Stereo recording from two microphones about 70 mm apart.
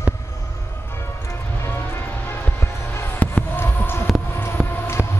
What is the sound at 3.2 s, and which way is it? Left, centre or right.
Basketball bounce, left.